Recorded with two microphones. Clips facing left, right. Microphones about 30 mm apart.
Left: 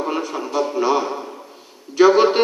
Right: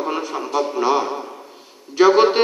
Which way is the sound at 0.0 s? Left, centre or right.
Centre.